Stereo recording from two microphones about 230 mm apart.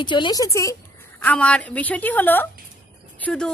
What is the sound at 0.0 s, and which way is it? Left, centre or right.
A woman's voice, centre.